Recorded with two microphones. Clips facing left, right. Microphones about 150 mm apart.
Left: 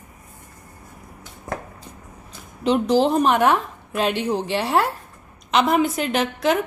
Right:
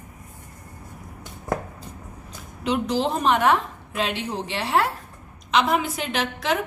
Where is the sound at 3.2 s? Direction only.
50° left (ahead or behind).